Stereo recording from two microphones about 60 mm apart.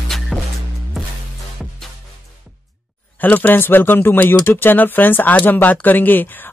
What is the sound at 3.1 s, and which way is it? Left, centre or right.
Speech, left.